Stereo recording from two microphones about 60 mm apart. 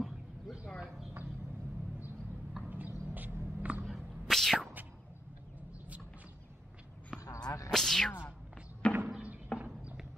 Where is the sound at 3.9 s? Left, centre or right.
Centre.